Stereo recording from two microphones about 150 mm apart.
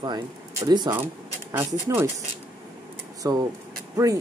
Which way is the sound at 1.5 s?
15° right (ahead or behind).